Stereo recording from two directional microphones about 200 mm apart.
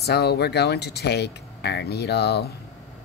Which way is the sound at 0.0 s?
55° left (ahead or behind).